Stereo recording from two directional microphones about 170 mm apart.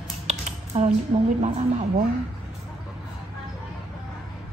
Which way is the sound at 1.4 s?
45° right (ahead or behind).